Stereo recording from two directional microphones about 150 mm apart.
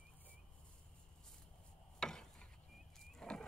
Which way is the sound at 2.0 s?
5° left (ahead or behind).